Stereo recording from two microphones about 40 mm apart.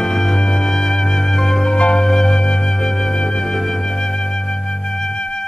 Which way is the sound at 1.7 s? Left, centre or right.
Left.